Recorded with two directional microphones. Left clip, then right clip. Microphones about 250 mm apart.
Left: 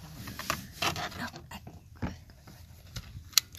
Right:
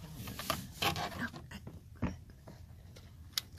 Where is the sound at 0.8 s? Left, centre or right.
Centre.